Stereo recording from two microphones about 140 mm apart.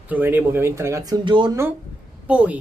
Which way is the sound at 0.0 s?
10° right (ahead or behind).